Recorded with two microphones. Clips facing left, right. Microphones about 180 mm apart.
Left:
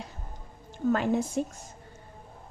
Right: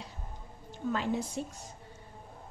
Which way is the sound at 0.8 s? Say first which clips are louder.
Left 6 dB; 50° left (ahead or behind).